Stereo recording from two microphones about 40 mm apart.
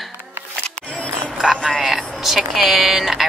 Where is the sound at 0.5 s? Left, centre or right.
Left.